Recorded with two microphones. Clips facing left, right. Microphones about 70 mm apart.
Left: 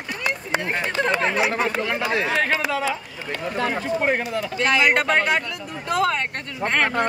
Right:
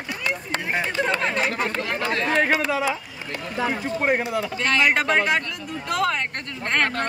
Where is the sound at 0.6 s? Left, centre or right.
Centre.